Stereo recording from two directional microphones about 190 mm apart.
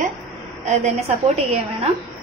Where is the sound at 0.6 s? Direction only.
35° right (ahead or behind).